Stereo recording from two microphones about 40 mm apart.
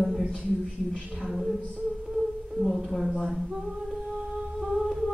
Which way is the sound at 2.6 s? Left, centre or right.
Centre.